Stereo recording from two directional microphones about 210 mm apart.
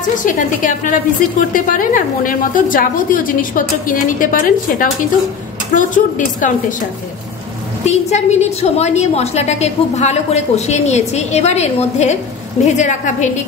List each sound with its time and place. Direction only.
0.2 s a woman's voice: 40° left (ahead or behind)
7.8 s a woman's voice: 30° left (ahead or behind)